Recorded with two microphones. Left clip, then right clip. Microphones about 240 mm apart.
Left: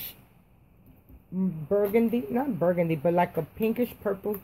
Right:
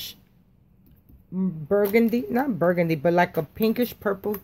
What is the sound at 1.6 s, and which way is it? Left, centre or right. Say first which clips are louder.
Speech: right 4 dB; centre.